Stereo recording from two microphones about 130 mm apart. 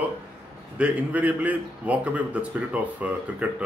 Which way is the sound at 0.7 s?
10° right (ahead or behind).